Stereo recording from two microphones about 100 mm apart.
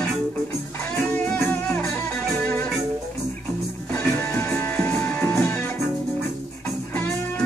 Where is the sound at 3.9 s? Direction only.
15° left (ahead or behind).